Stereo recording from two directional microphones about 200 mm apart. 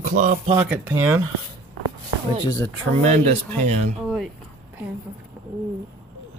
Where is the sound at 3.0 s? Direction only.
35° right (ahead or behind).